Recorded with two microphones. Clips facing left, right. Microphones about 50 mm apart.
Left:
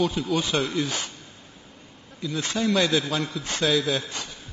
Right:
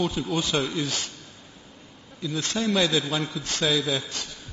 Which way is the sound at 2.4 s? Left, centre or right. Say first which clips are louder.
Left 1 dB; centre.